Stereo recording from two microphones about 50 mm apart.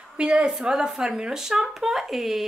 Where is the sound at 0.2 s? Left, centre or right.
Centre.